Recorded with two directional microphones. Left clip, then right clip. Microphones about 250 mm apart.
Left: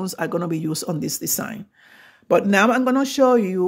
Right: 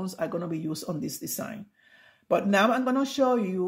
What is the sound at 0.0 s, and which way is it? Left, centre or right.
Speech, left.